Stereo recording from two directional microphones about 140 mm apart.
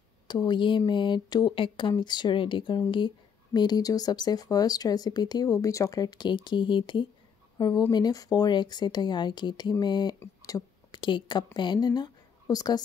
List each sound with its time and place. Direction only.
0.3 s a woman's voice: 35° left (ahead or behind)